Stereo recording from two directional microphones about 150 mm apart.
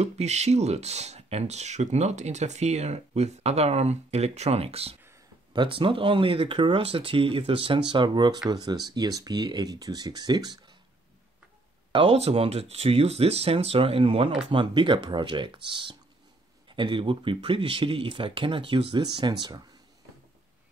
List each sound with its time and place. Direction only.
0.0 s speech: 50° right (ahead or behind); by 10.6 s 25° right (ahead or behind)
11.9 s speech: 40° right (ahead or behind)